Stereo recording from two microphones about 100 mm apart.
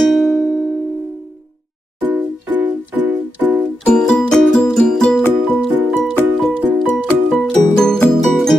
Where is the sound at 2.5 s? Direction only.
15° right (ahead or behind).